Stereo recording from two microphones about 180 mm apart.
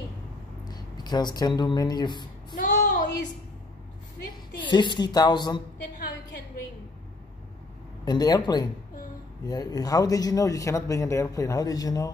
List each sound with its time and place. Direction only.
0.7 s speech: 25° left (ahead or behind)
2.5 s a sound: 45° left (ahead or behind)
4.6 s speech: 25° left (ahead or behind)
8.0 s speech: 20° left (ahead or behind)